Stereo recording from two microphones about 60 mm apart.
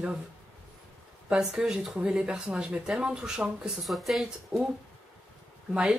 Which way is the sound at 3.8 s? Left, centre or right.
Centre.